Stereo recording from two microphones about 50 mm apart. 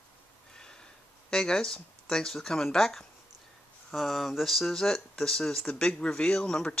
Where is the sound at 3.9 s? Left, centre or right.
Centre.